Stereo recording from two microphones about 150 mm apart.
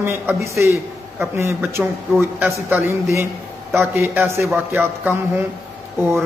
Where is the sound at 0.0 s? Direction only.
15° right (ahead or behind).